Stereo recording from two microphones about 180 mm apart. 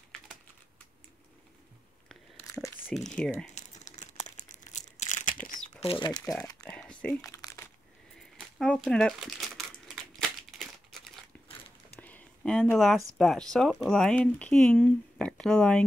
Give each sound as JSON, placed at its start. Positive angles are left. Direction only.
{"t": 2.9, "sound": "speech", "side_deg": 5}
{"t": 3.5, "sound": "crumpling", "side_deg": 40}
{"t": 5.9, "sound": "speech", "side_deg": 25}
{"t": 6.6, "sound": "a sound", "side_deg": 5}
{"t": 7.2, "sound": "crumpling", "side_deg": 15}
{"t": 8.4, "sound": "speech", "side_deg": 5}
{"t": 10.1, "sound": "crumpling", "side_deg": 0}
{"t": 12.0, "sound": "a sound", "side_deg": 5}
{"t": 13.2, "sound": "speech", "side_deg": 0}